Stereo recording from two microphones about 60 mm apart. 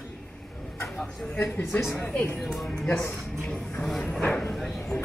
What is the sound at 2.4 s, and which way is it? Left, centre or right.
Speech, centre.